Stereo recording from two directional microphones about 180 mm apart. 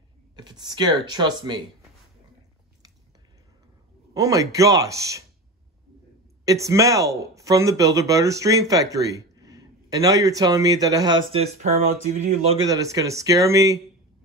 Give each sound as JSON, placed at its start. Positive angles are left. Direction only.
{"t": 0.4, "sound": "speech", "side_deg": -25}
{"t": 4.1, "sound": "speech", "side_deg": -20}
{"t": 6.4, "sound": "speech", "side_deg": -20}
{"t": 11.6, "sound": "speech", "side_deg": -40}
{"t": 12.5, "sound": "speech", "side_deg": -20}